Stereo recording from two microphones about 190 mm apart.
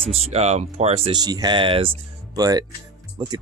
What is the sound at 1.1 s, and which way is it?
Speech, 20° right (ahead or behind).